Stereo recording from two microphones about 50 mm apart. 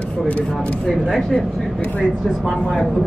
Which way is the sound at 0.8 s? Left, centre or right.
Centre.